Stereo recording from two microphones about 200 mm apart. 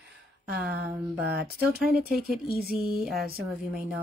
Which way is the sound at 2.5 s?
Centre (ahead or behind).